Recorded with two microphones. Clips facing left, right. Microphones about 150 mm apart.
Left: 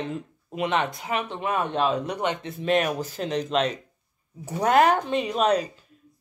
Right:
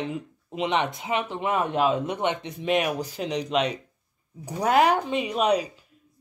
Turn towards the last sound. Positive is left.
turn(degrees=-10)  # may be behind; listen again after turning